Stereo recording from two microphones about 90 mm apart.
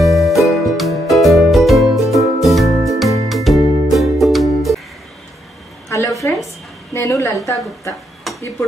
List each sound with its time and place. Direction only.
0.0 s music: centre (ahead or behind)
5.9 s a sound: 35° left (ahead or behind)
8.3 s dishes: centre (ahead or behind)